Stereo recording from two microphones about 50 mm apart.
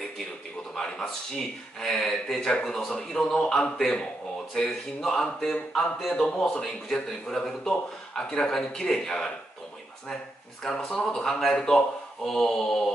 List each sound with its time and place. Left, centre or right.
0.7 s speech: centre
10.6 s speech: centre